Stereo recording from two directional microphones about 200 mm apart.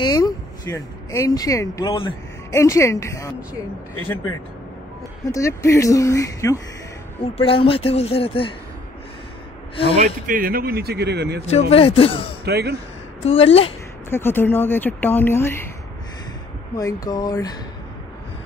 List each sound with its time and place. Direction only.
0.0 s speech: 20° left (ahead or behind)
5.2 s speech: 15° left (ahead or behind)
7.3 s speech: 25° left (ahead or behind)
9.9 s speech: 40° right (ahead or behind); by 11.4 s 55° right (ahead or behind)
11.4 s speech: 30° left (ahead or behind)
12.4 s speech: 55° right (ahead or behind)
13.2 s speech: 30° left (ahead or behind)
14.1 s speech: 10° left (ahead or behind)
16.7 s speech: 20° left (ahead or behind)